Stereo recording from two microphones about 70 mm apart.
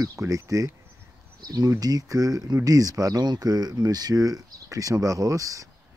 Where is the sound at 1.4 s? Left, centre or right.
Right.